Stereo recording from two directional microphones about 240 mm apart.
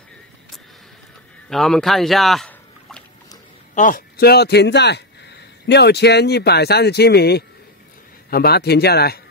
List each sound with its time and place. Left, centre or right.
1.5 s speech: centre
3.7 s speech: left